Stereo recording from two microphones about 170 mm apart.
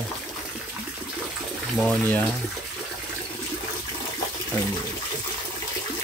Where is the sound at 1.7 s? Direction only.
5° left (ahead or behind).